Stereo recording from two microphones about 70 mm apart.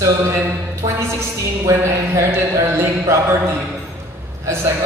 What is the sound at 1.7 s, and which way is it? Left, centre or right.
A man's voice, right.